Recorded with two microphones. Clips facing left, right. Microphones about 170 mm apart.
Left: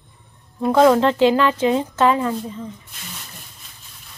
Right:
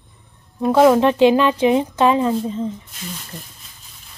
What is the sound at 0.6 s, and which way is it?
Speech, 10° right (ahead or behind).